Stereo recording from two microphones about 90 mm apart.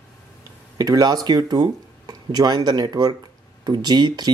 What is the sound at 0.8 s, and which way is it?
Speech, 45° right (ahead or behind).